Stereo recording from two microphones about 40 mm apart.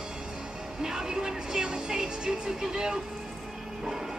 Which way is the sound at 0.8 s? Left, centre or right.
Centre.